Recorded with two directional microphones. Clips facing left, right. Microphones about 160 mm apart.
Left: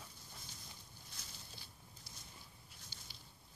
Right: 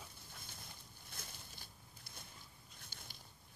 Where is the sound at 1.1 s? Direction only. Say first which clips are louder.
Right 3 dB; 55° right (ahead or behind).